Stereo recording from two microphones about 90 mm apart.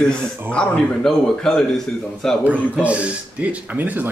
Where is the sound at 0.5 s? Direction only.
15° left (ahead or behind).